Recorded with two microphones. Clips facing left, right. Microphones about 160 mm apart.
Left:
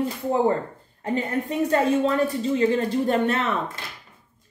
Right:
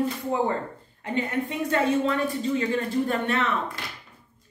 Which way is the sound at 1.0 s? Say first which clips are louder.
Left 2 dB; 35° left (ahead or behind).